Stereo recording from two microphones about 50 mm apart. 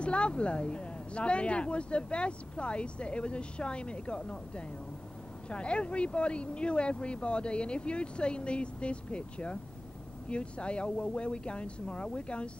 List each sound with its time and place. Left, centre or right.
0.0 s speech: left